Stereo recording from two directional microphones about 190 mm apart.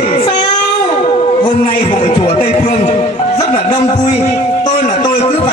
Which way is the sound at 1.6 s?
40° left (ahead or behind).